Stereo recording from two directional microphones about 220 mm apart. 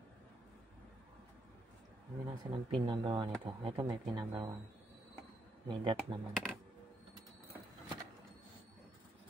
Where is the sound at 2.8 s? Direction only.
20° right (ahead or behind).